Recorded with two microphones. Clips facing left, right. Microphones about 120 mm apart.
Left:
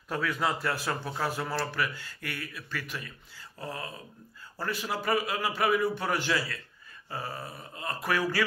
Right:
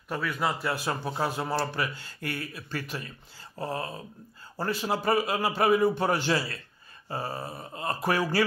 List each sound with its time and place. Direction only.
0.1 s a man's voice: 5° right (ahead or behind); by 8.5 s 30° right (ahead or behind)